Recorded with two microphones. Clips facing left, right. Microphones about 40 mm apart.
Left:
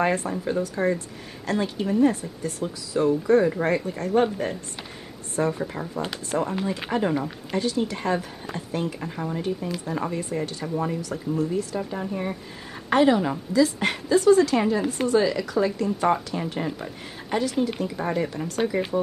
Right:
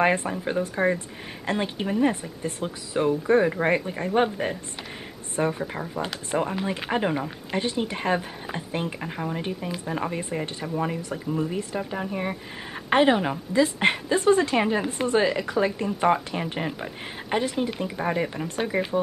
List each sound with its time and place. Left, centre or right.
0.0 s speech: right; by 18.9 s centre